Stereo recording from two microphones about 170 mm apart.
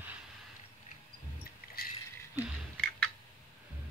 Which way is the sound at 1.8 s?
60° left (ahead or behind).